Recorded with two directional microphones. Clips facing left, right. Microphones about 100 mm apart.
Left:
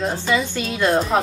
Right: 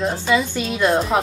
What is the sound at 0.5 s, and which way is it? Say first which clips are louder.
Speech: right 1 dB; 15° right (ahead or behind).